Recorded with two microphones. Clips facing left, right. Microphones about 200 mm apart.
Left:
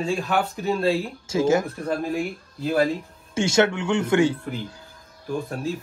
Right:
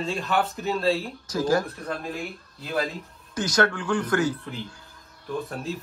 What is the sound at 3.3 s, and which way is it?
Speech, 25° left (ahead or behind).